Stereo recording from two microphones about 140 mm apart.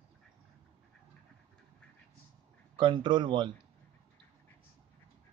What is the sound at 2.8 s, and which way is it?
Speech, 35° right (ahead or behind).